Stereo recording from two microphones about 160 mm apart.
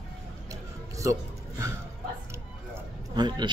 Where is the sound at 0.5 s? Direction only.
20° right (ahead or behind).